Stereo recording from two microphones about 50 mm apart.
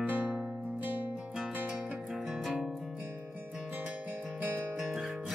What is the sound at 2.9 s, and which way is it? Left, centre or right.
Music, right.